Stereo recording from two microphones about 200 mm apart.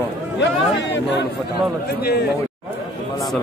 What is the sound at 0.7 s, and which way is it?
A man's voice, 60° left (ahead or behind).